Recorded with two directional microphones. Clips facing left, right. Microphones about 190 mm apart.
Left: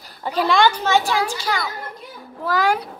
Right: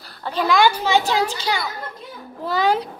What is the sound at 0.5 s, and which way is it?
A woman's voice, 10° right (ahead or behind).